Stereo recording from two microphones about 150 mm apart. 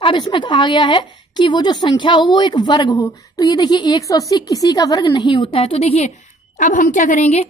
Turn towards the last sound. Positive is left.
turn(degrees=50)  # may be behind; listen again after turning